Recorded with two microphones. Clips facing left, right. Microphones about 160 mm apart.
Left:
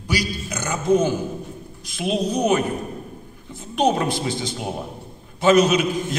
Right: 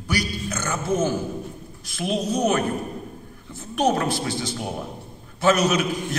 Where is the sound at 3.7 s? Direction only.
20° left (ahead or behind).